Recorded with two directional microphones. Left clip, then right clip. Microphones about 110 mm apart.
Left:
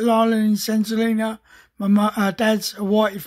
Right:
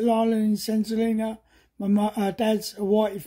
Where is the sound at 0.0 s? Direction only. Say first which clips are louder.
Left 5 dB; 30° right (ahead or behind).